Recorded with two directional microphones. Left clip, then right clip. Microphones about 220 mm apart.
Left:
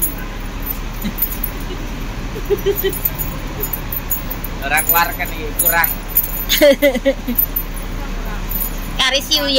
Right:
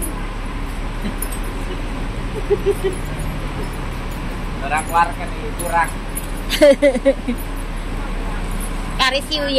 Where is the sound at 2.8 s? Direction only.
50° left (ahead or behind).